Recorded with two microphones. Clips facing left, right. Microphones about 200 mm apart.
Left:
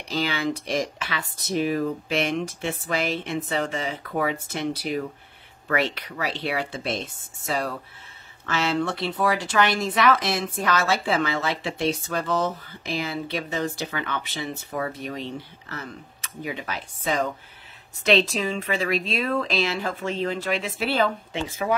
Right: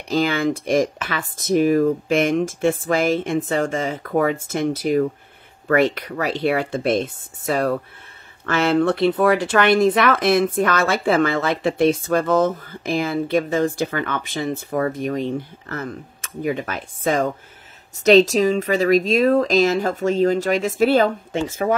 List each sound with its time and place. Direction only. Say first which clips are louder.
0.1 s speech: right 7 dB; 50° right (ahead or behind)